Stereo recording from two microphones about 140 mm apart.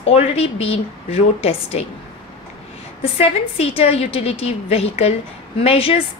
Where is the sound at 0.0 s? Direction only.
45° left (ahead or behind).